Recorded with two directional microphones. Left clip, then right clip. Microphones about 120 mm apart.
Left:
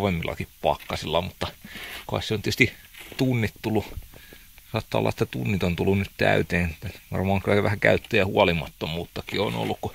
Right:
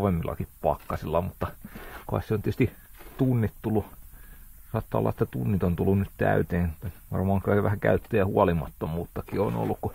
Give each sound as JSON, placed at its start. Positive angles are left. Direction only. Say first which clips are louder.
{"t": 0.0, "sound": "speech", "louder": "left 2 dB", "side_deg": 30}
{"t": 3.2, "sound": "speech", "louder": "left 2 dB", "side_deg": 40}